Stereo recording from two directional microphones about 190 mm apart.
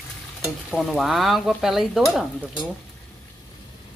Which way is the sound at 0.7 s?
Centre (ahead or behind).